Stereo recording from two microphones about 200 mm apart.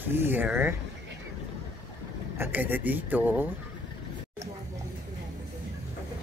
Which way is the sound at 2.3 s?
10° right (ahead or behind).